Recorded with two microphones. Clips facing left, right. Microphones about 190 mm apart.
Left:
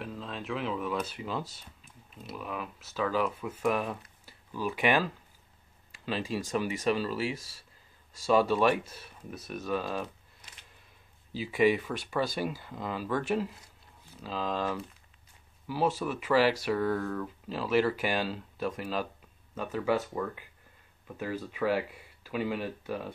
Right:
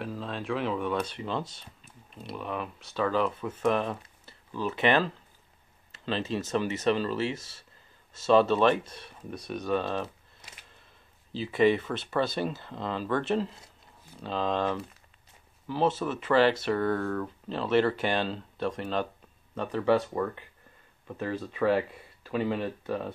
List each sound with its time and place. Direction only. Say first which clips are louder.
0.0 s speech: right 4 dB; centre (ahead or behind)
11.3 s speech: right 2 dB; 10° left (ahead or behind)
21.2 s speech: right 3 dB; 10° left (ahead or behind)